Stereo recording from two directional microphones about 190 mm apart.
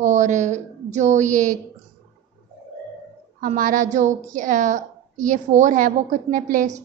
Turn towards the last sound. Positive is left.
turn(degrees=-40)  # may be behind; listen again after turning